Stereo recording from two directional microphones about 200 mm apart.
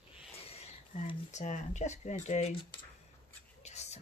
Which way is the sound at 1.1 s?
35° left (ahead or behind).